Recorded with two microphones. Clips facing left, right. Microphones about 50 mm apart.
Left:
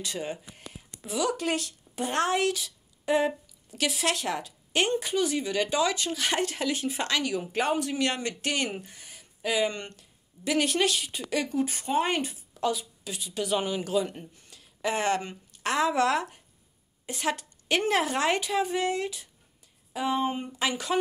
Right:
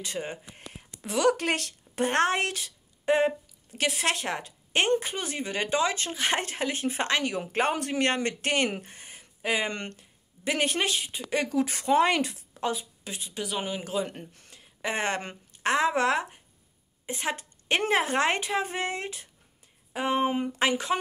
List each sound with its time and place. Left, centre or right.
0.0 s speech: right
1.0 s speech: right
7.3 s speech: right
8.9 s a sound: right
9.7 s speech: right
9.9 s a woman's voice: right
11.5 s speech: right
12.5 s a woman's voice: right
13.7 s speech: centre
14.0 s speech: right
14.5 s a sound: right
15.6 s speech: right
20.2 s speech: right
20.5 s speech: right